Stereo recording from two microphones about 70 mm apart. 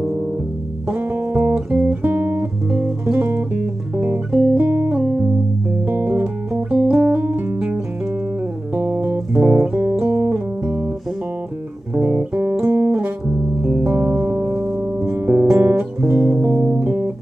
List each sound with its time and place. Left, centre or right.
0.8 s music: right
1.8 s guitar: right
4.9 s music: right
8.7 s music: right
11.9 s music: centre
12.6 s music: right